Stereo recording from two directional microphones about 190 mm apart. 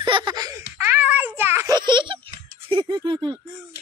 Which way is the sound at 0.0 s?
25° right (ahead or behind).